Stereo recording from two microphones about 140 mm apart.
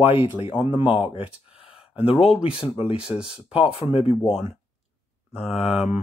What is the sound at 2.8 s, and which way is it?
Speech, 5° right (ahead or behind).